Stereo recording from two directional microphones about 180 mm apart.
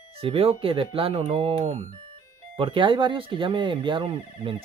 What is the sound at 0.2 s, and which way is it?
Speech, 30° right (ahead or behind).